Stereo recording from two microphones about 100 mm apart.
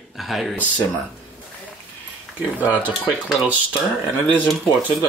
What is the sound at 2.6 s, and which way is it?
Speech, 15° right (ahead or behind).